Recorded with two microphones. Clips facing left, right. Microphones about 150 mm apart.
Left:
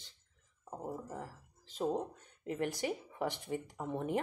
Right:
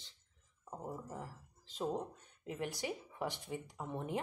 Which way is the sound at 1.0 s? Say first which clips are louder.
Left 2 dB; 45° left (ahead or behind).